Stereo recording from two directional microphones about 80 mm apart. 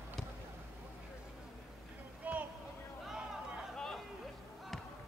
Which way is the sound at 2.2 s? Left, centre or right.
Centre.